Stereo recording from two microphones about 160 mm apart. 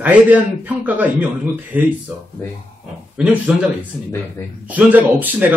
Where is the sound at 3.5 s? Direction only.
5° right (ahead or behind).